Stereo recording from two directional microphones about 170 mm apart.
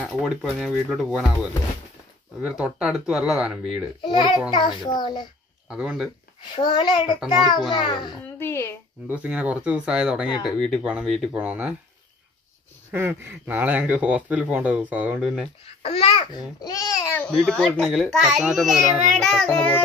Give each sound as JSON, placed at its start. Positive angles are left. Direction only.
{"t": 0.0, "sound": "a child's voice", "side_deg": 0}
{"t": 4.0, "sound": "a child's voice", "side_deg": 25}
{"t": 5.7, "sound": "a child's voice", "side_deg": -5}
{"t": 6.5, "sound": "a child's voice", "side_deg": 25}
{"t": 7.2, "sound": "a child's voice", "side_deg": -5}
{"t": 7.7, "sound": "a child's voice", "side_deg": 25}
{"t": 8.4, "sound": "speech", "side_deg": 15}
{"t": 9.1, "sound": "a child's voice", "side_deg": -10}
{"t": 12.9, "sound": "speech", "side_deg": -10}
{"t": 15.6, "sound": "a child's voice", "side_deg": 35}
{"t": 16.6, "sound": "babbling", "side_deg": 20}
{"t": 17.5, "sound": "a child's voice", "side_deg": 5}